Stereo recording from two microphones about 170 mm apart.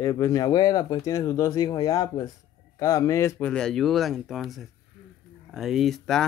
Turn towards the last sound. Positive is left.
turn(degrees=0)  # may be behind; listen again after turning